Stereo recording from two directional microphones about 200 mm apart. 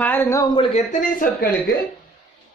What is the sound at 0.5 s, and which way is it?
Speech, 35° left (ahead or behind).